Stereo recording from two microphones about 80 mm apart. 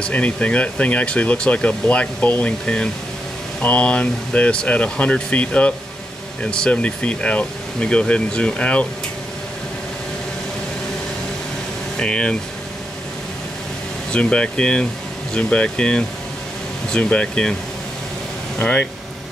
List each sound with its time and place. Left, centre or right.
0.0 s speech: centre
12.0 s speech: centre
14.1 s speech: centre
18.6 s speech: centre